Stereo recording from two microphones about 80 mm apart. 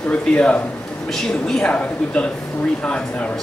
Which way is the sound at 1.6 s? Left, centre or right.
Centre.